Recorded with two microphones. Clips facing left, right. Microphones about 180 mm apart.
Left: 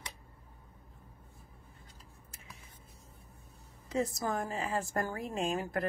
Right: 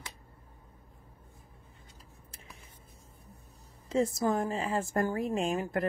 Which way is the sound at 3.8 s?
25° right (ahead or behind).